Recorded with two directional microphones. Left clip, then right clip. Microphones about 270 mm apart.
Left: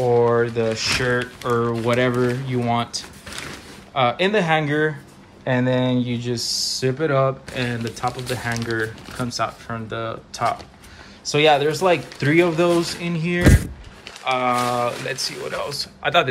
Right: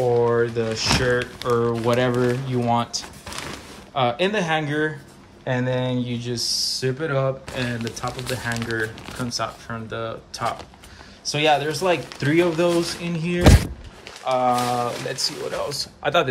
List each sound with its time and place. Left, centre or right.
0.0 s speech: centre